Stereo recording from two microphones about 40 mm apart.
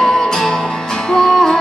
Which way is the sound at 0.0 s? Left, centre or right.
Centre.